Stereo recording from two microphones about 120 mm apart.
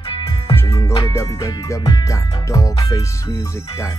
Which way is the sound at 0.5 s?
25° left (ahead or behind).